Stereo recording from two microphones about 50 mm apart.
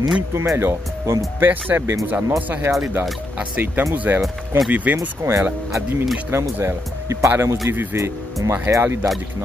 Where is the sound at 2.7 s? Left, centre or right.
Right.